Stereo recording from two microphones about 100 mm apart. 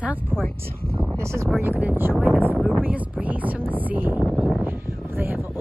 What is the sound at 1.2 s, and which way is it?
Speech, 30° right (ahead or behind).